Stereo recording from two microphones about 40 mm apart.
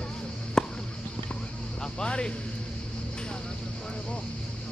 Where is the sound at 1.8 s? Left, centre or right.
Left.